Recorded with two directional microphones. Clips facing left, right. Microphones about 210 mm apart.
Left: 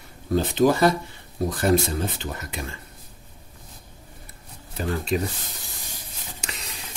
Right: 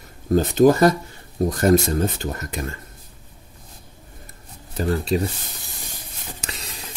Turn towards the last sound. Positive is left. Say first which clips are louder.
# right 4 dB
turn(degrees=-35)  # may be behind; listen again after turning